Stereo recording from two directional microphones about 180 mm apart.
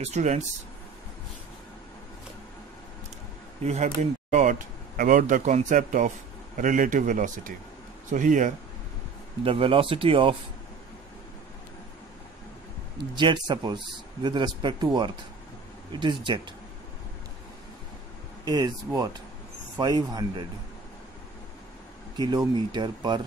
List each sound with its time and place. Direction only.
0.0 s speech: 40° right (ahead or behind)
3.6 s speech: 40° right (ahead or behind)
9.4 s speech: 30° right (ahead or behind)
12.9 s speech: 25° right (ahead or behind)
15.9 s speech: 25° right (ahead or behind)
18.4 s speech: 20° right (ahead or behind)
19.8 s speech: 20° right (ahead or behind)
22.1 s speech: 25° right (ahead or behind)